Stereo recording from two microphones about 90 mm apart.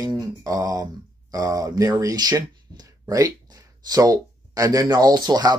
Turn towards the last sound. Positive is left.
turn(degrees=-50)  # may be behind; listen again after turning